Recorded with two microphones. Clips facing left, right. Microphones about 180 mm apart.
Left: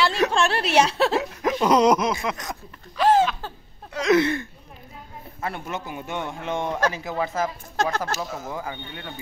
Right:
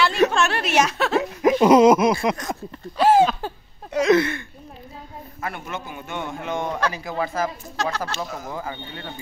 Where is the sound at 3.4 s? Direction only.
15° right (ahead or behind).